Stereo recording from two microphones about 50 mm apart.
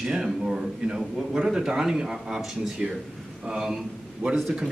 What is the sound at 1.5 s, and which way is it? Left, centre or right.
Speech, centre.